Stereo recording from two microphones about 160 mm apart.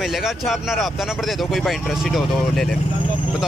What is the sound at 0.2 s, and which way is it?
Speech, centre (ahead or behind).